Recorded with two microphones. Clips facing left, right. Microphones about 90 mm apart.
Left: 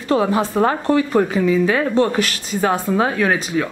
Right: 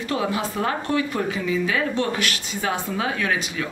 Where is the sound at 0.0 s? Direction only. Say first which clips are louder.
Left 7 dB; 35° left (ahead or behind).